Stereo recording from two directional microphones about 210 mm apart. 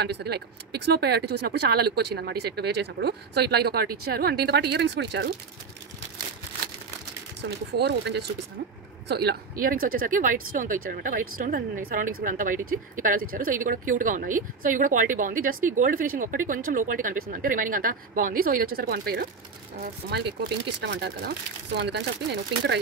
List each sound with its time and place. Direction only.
0.0 s speech: 50° right (ahead or behind)
7.4 s speech: 55° right (ahead or behind)